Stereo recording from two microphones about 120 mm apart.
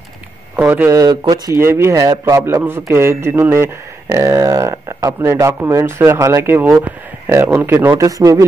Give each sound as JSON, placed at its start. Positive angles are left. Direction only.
{"t": 0.6, "sound": "speech", "side_deg": -15}
{"t": 1.3, "sound": "speech", "side_deg": -30}
{"t": 1.6, "sound": "speech", "side_deg": -20}